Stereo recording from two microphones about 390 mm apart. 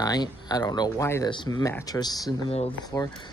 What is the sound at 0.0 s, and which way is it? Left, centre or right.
Speech, centre.